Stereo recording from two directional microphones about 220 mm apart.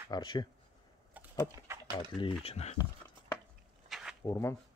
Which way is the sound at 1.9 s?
25° left (ahead or behind).